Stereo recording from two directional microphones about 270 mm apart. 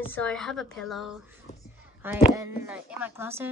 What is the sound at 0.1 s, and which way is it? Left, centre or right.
Speech, centre.